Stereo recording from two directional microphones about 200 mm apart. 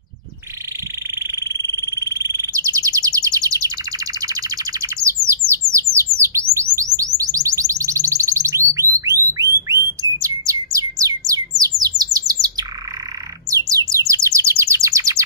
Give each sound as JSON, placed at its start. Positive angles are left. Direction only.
{"t": 1.4, "sound": "bird", "side_deg": -20}
{"t": 6.5, "sound": "a sound", "side_deg": -15}
{"t": 11.0, "sound": "bird", "side_deg": -15}
{"t": 11.9, "sound": "bird", "side_deg": -35}
{"t": 13.5, "sound": "bird", "side_deg": -15}